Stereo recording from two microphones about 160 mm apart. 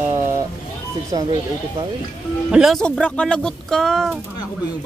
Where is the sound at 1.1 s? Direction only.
30° right (ahead or behind).